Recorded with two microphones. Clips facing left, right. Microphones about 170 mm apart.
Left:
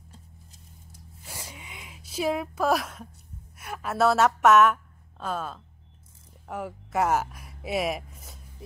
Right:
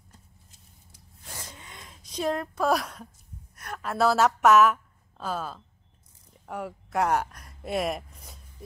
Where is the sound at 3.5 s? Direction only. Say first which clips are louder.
Left 1 dB; 5° left (ahead or behind).